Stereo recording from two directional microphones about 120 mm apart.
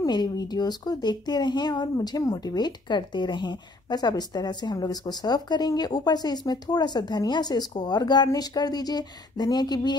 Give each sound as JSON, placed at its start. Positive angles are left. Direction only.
{"t": 0.0, "sound": "speech", "side_deg": 35}